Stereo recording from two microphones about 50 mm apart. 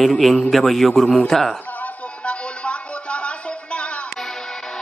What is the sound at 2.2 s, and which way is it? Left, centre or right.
Music, left.